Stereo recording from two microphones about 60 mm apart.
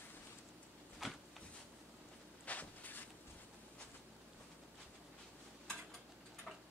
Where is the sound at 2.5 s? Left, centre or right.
Left.